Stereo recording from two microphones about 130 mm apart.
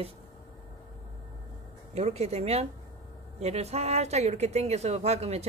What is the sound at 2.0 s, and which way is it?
Speech, 55° right (ahead or behind).